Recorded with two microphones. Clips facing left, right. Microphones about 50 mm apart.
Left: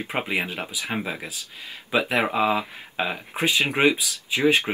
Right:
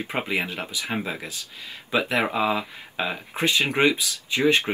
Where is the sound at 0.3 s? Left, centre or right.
Centre.